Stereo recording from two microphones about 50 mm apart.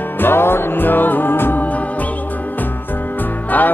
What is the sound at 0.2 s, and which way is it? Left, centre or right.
Music, left.